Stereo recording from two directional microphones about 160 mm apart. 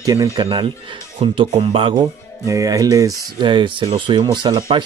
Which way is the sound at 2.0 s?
20° right (ahead or behind).